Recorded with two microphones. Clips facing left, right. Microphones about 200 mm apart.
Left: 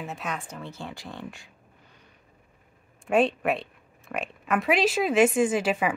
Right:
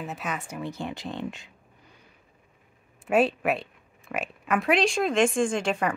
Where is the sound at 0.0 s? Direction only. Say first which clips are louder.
Right 1 dB; centre (ahead or behind); by 1.5 s 20° right (ahead or behind).